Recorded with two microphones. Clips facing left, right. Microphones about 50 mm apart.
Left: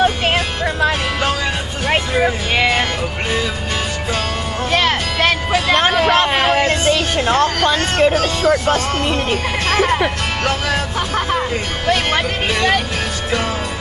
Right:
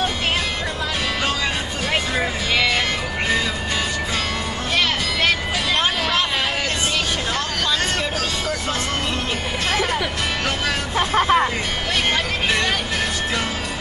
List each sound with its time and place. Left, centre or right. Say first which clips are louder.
1.9 s music: left 7 dB; left
4.7 s music: left 4 dB; left
9.7 s speech: left 6 dB; left
11.0 s speech: right 2 dB; right
11.9 s speech: left 5 dB; left